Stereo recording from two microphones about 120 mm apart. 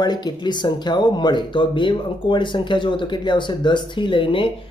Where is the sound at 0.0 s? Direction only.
35° left (ahead or behind).